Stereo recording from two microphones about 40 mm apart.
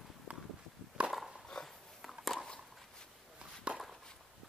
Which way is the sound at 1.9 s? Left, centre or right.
Centre.